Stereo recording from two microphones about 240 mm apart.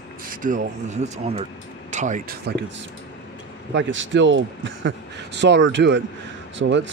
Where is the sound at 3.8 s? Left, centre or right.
Right.